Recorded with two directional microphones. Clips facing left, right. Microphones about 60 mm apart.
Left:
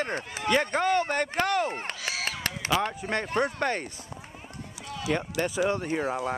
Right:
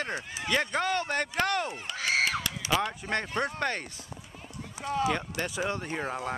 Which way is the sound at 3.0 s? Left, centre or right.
Centre.